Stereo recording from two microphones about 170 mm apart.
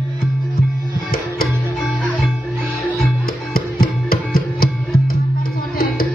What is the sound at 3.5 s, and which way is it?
Music, 60° left (ahead or behind).